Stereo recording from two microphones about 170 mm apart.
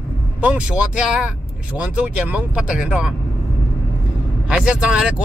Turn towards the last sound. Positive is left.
turn(degrees=-5)  # may be behind; listen again after turning